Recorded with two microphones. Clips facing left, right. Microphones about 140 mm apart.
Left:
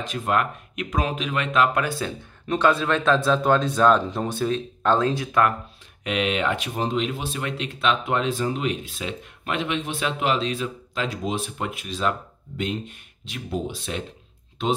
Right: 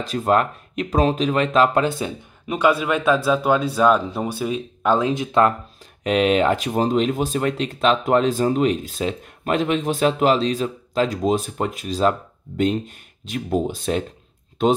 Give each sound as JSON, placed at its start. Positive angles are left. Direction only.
{"t": 0.0, "sound": "speech", "side_deg": -35}
{"t": 6.0, "sound": "speech", "side_deg": -40}